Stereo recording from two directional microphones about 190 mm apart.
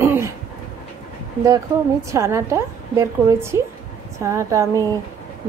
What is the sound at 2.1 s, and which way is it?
A woman's voice, 15° right (ahead or behind).